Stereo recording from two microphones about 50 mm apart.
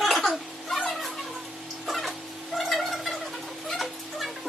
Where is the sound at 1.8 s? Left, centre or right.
Centre.